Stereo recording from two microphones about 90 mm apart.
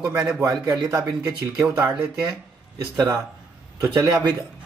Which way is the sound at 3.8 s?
50° right (ahead or behind).